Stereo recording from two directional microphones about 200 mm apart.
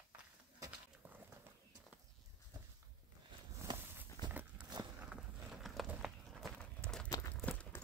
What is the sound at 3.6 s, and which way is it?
Walk, 10° right (ahead or behind).